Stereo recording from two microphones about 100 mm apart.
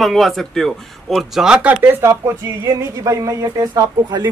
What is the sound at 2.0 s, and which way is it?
Speech, 25° right (ahead or behind).